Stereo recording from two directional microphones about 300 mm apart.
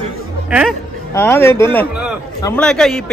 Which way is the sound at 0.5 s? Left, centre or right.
Centre.